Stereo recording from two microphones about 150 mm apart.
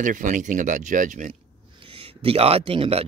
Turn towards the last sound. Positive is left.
turn(degrees=-40)  # may be behind; listen again after turning